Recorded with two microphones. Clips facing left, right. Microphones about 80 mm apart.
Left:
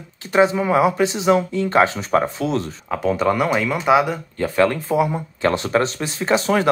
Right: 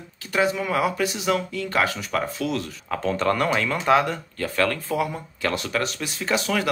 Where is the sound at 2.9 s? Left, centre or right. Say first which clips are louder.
Left 4 dB; centre.